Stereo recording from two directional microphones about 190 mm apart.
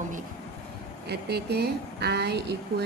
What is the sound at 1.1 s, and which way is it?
A woman's voice, 60° right (ahead or behind).